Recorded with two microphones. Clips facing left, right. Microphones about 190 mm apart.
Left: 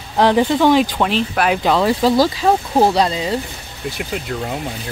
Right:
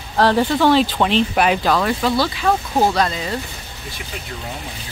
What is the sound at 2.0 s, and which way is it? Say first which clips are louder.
Speech: left 5 dB; 35° left (ahead or behind).